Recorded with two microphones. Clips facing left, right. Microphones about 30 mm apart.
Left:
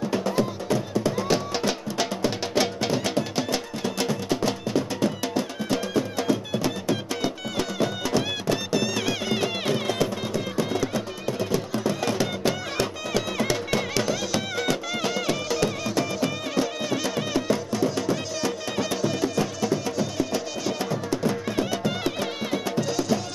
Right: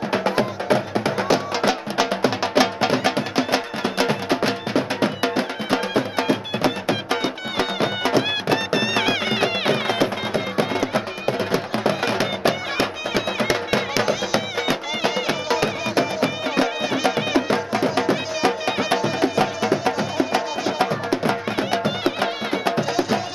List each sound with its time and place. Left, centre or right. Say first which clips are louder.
0.1 s music: right 6 dB; right
1.7 s music: right 6 dB; right